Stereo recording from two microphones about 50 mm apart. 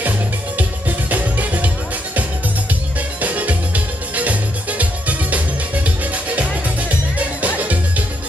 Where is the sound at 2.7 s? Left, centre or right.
Right.